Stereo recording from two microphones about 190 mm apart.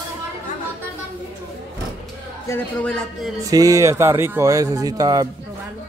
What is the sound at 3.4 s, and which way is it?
A man's voice, 20° right (ahead or behind).